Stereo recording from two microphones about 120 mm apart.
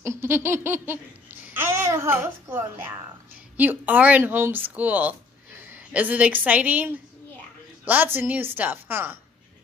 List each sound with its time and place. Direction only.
0.0 s laughter: 20° right (ahead or behind)
3.5 s speech: 15° right (ahead or behind)